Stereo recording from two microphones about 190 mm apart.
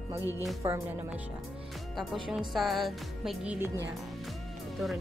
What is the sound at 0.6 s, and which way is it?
Speech, 15° right (ahead or behind).